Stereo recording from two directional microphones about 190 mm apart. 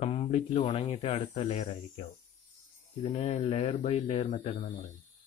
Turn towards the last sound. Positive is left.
turn(degrees=35)  # may be behind; listen again after turning